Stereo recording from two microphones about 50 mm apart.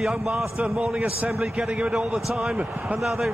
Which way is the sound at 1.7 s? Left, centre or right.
Right.